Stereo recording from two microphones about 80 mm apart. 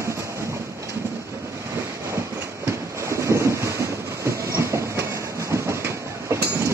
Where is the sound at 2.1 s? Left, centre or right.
Right.